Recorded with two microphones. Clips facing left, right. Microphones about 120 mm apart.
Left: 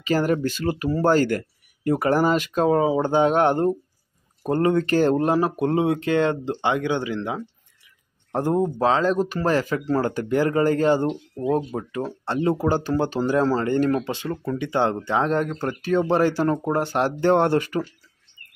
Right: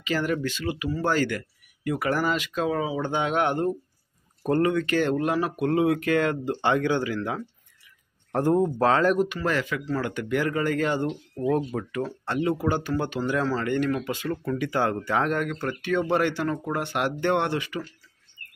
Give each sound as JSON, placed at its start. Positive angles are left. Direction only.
{"t": 0.0, "sound": "speech", "side_deg": 40}
{"t": 4.4, "sound": "speech", "side_deg": 25}
{"t": 4.6, "sound": "speech", "side_deg": 35}
{"t": 9.2, "sound": "speech", "side_deg": 35}
{"t": 14.1, "sound": "speech", "side_deg": 25}